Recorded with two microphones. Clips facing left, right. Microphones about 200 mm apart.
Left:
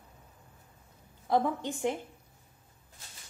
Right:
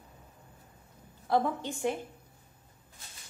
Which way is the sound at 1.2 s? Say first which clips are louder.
Even; 15° left (ahead or behind).